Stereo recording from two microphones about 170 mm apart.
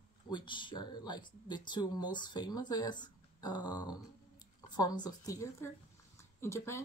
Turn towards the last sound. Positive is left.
turn(degrees=15)  # may be behind; listen again after turning